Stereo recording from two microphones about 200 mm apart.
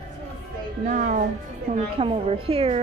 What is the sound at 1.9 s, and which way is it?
Speech, 25° right (ahead or behind).